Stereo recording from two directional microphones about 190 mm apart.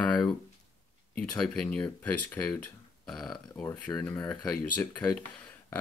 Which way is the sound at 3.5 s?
5° left (ahead or behind).